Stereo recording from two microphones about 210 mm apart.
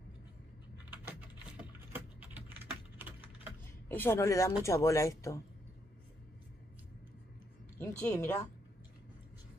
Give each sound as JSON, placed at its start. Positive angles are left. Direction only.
{"t": 1.6, "sound": "typing", "side_deg": -10}
{"t": 3.9, "sound": "a woman's voice", "side_deg": 10}
{"t": 7.8, "sound": "a woman's voice", "side_deg": 10}